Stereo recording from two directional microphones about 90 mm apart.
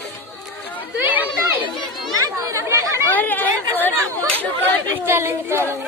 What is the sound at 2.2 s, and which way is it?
Chatter, 35° right (ahead or behind).